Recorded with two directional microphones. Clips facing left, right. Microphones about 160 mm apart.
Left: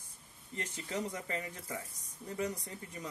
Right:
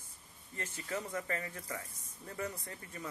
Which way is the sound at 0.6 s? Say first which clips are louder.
Left 2 dB; 20° left (ahead or behind).